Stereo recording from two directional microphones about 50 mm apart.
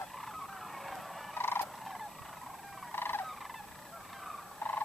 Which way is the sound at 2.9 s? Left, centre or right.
Left.